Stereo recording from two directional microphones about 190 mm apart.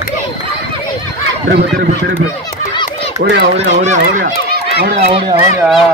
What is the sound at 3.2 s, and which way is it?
Speech, 50° right (ahead or behind).